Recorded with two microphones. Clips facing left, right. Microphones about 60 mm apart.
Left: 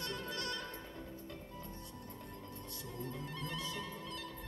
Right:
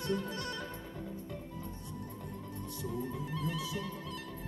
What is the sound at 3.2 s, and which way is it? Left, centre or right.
Music, centre.